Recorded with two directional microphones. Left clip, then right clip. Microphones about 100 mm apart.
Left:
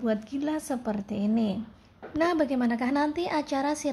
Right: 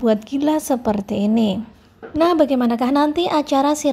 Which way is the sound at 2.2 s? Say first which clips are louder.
Right 10 dB; 45° right (ahead or behind).